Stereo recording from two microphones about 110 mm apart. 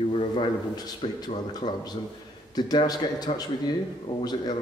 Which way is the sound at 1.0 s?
45° left (ahead or behind).